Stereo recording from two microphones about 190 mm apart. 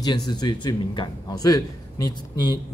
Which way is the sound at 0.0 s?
20° left (ahead or behind).